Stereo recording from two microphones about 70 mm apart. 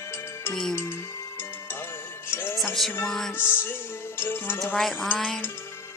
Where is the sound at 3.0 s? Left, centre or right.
Centre.